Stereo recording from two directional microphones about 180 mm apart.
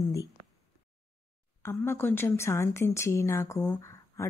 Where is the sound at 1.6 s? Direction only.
15° left (ahead or behind).